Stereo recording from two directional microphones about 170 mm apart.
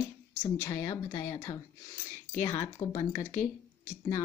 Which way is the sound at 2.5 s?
20° left (ahead or behind).